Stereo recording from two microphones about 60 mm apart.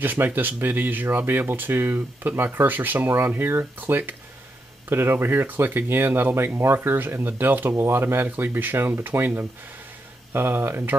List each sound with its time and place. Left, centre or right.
0.0 s speech: right